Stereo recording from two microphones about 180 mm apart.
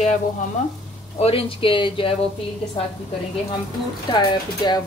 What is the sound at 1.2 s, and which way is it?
Speech, 30° left (ahead or behind).